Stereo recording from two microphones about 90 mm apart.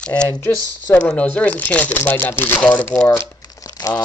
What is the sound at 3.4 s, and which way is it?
Crumpling, 45° left (ahead or behind).